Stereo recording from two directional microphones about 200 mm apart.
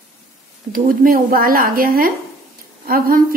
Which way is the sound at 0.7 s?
45° right (ahead or behind).